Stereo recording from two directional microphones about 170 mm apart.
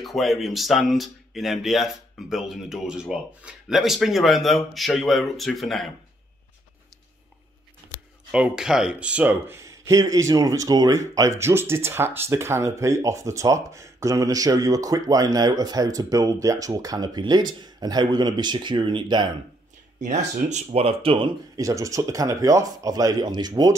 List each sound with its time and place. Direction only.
0.0 s speech: centre (ahead or behind)
8.3 s speech: 5° right (ahead or behind); by 19.2 s 25° right (ahead or behind)
20.4 s speech: 40° right (ahead or behind); by 23.7 s 25° right (ahead or behind)